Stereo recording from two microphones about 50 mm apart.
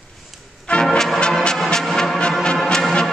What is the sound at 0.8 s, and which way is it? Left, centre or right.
Brass instrument, centre.